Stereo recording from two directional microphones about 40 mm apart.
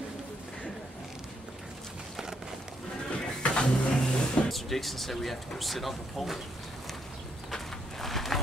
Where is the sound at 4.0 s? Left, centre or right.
Centre.